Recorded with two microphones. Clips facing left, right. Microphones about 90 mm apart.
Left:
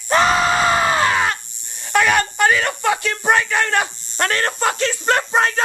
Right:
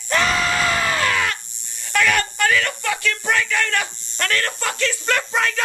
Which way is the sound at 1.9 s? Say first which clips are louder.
Left 3 dB; 25° left (ahead or behind).